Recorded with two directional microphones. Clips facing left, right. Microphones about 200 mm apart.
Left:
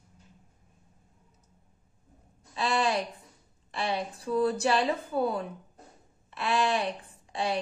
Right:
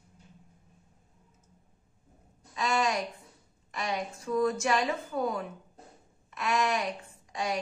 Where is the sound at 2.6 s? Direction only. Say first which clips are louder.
Left 1 dB; 30° left (ahead or behind).